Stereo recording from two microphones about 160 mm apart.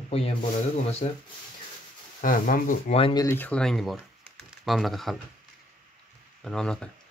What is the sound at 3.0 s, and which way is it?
Speech, 35° left (ahead or behind).